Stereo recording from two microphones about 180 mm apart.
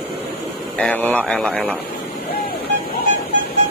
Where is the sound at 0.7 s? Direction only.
10° left (ahead or behind).